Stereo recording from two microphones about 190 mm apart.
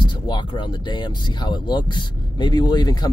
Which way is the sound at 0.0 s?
25° left (ahead or behind).